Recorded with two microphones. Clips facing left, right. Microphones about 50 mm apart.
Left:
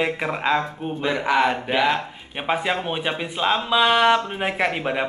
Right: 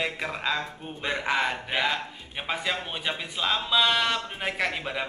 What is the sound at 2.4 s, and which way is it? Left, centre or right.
A man's voice, left.